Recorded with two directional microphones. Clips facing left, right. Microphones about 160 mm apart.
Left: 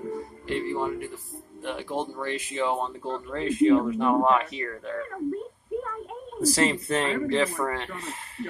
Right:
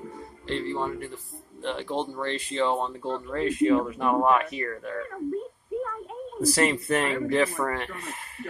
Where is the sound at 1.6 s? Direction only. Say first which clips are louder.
Right 1 dB; 10° left (ahead or behind).